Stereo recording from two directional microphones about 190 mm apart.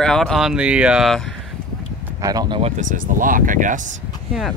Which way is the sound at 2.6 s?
40° right (ahead or behind).